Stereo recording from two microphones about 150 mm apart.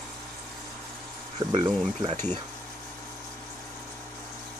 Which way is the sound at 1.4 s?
25° right (ahead or behind).